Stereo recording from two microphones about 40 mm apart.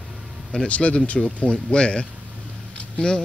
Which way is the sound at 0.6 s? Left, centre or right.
Left.